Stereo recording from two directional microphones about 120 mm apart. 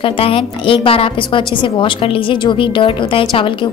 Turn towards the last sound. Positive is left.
turn(degrees=45)  # may be behind; listen again after turning